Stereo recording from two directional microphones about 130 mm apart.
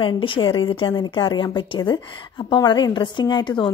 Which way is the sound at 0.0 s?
40° left (ahead or behind).